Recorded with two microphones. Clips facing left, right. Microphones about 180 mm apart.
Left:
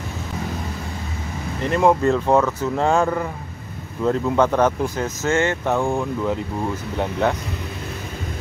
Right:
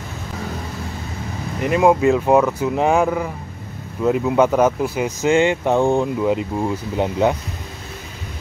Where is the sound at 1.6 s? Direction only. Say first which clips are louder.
Right 2 dB; 10° right (ahead or behind).